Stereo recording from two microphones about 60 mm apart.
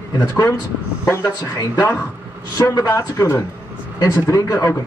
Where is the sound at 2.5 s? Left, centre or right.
Left.